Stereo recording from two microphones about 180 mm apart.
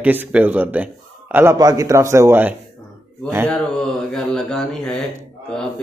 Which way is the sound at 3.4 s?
5° left (ahead or behind).